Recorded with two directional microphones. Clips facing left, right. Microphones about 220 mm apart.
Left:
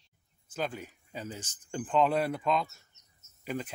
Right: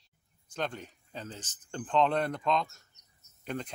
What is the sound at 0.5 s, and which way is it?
Speech, 5° left (ahead or behind).